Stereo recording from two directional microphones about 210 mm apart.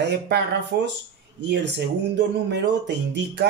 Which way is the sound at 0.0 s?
55° right (ahead or behind).